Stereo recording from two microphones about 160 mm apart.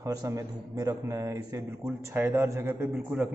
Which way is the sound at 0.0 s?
20° right (ahead or behind).